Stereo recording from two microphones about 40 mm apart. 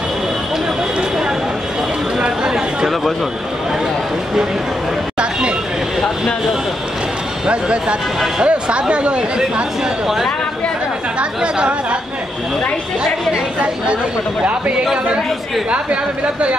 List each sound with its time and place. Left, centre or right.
2.1 s a sound: centre
7.4 s speech: right
11.1 s speech: right
15.7 s speech: right